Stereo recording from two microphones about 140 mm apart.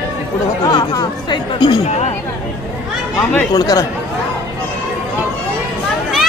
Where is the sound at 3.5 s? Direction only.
25° left (ahead or behind).